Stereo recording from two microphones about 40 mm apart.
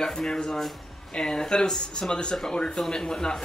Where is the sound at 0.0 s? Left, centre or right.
Centre.